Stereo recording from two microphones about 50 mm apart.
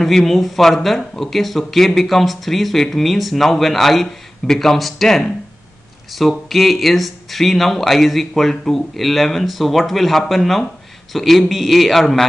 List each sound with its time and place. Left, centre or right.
0.0 s speech: centre